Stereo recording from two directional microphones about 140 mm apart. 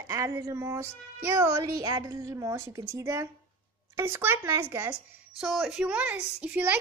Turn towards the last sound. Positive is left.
turn(degrees=-10)  # may be behind; listen again after turning